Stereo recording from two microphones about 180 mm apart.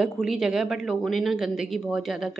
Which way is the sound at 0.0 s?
5° right (ahead or behind).